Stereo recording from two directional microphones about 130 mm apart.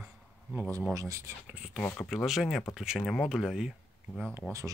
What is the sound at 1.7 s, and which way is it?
Speech, 15° left (ahead or behind).